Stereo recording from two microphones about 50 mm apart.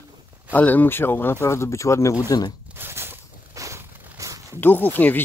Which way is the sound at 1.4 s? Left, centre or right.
Left.